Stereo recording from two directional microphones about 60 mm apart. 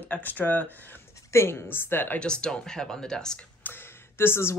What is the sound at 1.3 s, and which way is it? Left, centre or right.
Speech, left.